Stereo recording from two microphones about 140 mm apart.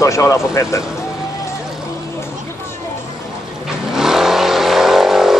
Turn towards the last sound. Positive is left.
turn(degrees=0)  # may be behind; listen again after turning